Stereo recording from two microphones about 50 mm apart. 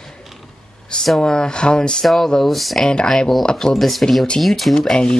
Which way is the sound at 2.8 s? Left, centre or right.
Centre.